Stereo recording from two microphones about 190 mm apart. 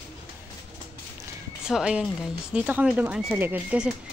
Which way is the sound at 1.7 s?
5° right (ahead or behind).